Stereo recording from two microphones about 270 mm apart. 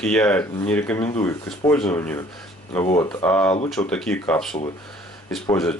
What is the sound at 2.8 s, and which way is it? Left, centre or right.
Speech, centre.